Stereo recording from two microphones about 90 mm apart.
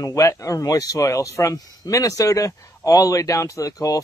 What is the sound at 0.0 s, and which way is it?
Speech, 40° left (ahead or behind).